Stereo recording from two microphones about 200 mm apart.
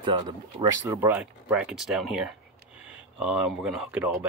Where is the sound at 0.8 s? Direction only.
10° right (ahead or behind).